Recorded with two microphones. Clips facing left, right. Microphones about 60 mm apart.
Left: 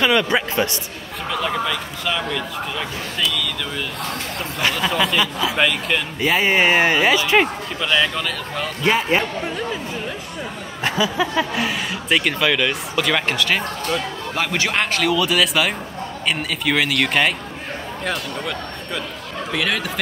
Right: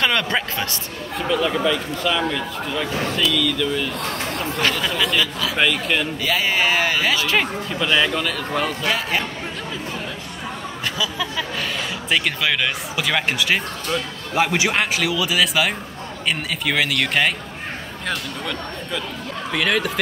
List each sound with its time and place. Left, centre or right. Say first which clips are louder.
0.0 s speech: left 3 dB; centre
6.2 s speech: left 6 dB; left
7.8 s speech: even; centre
8.8 s speech: left 4 dB; left
10.8 s speech: left 6 dB; left
12.1 s speech: left 3 dB; centre
19.5 s speech: right 2 dB; centre